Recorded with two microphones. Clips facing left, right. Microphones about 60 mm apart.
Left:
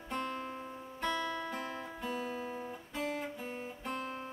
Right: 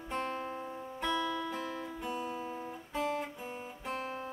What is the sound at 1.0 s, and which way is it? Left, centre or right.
Music, left.